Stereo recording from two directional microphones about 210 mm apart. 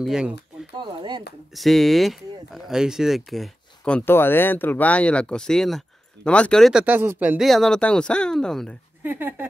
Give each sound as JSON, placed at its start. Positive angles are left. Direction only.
{"t": 0.0, "sound": "speech", "side_deg": -5}
{"t": 0.7, "sound": "chop", "side_deg": -20}
{"t": 1.5, "sound": "speech", "side_deg": 0}
{"t": 9.0, "sound": "speech", "side_deg": -10}